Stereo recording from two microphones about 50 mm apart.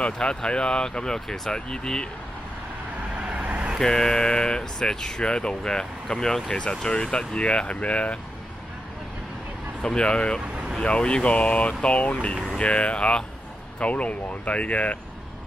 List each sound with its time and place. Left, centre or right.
0.0 s speech: centre
3.2 s vehicle: right
3.8 s speech: centre
9.8 s speech: centre